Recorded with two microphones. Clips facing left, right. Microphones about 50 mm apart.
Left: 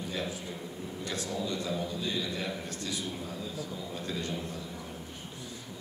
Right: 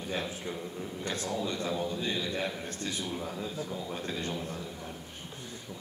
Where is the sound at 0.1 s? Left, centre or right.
Right.